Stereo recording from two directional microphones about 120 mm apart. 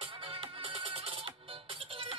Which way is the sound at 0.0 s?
50° right (ahead or behind).